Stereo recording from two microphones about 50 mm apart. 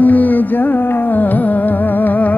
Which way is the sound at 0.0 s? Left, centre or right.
Left.